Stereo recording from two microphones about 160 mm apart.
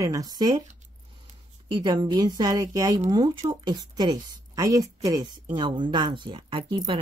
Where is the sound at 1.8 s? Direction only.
30° right (ahead or behind).